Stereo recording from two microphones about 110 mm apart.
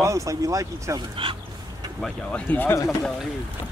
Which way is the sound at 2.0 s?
10° left (ahead or behind).